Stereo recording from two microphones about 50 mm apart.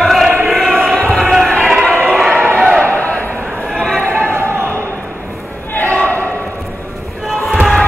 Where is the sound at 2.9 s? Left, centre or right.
Left.